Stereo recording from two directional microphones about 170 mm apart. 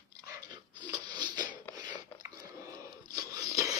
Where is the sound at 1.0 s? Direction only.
25° right (ahead or behind).